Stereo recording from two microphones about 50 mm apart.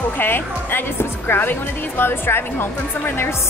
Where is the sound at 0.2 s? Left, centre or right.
Left.